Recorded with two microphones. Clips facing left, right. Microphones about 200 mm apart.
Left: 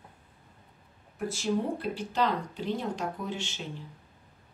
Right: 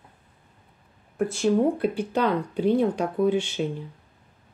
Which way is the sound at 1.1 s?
55° right (ahead or behind).